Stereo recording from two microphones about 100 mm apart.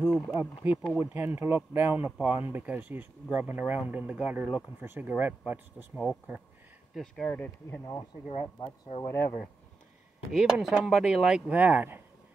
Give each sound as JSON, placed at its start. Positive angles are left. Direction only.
{"t": 0.0, "sound": "speech", "side_deg": -15}
{"t": 6.9, "sound": "speech", "side_deg": 5}
{"t": 7.2, "sound": "speech", "side_deg": 15}
{"t": 9.0, "sound": "speech", "side_deg": 25}
{"t": 10.3, "sound": "speech", "side_deg": -5}